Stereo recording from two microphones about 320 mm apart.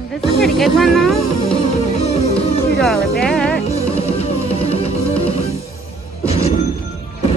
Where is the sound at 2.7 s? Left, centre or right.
Centre.